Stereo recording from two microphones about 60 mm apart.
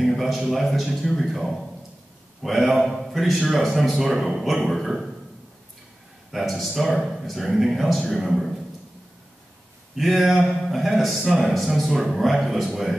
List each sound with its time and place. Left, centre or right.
0.0 s a man's voice: centre
6.3 s a man's voice: centre
9.9 s a man's voice: centre